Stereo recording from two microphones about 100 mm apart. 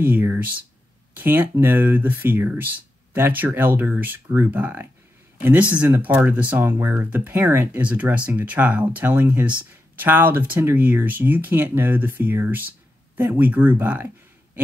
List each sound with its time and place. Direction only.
0.0 s speech: 20° right (ahead or behind)